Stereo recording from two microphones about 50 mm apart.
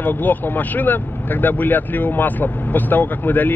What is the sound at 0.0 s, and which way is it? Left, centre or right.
Speech, left.